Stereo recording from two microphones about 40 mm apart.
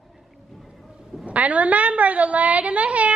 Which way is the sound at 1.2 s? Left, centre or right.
Right.